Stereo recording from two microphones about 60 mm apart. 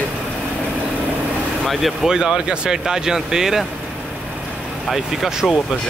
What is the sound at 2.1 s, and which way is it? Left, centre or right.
Speech, centre.